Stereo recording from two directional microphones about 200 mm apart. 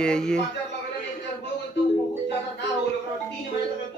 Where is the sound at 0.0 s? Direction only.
5° left (ahead or behind).